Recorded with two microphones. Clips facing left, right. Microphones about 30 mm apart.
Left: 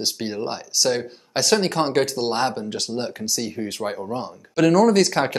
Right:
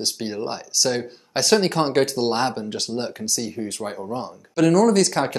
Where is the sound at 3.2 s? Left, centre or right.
Centre.